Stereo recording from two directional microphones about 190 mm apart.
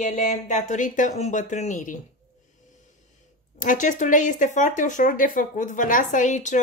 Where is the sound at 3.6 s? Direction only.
40° left (ahead or behind).